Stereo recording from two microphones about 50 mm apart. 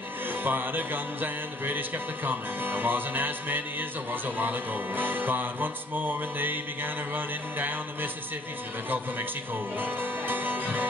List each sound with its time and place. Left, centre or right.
0.3 s speech: right
9.8 s music: right